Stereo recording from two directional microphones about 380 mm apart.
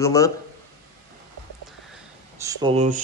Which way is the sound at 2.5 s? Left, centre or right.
Centre.